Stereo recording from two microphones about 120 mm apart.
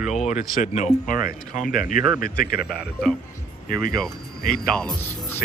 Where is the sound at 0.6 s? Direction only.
85° left.